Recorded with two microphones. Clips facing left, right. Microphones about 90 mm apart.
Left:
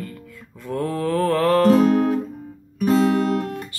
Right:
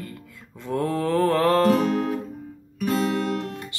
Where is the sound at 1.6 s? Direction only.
35° left (ahead or behind).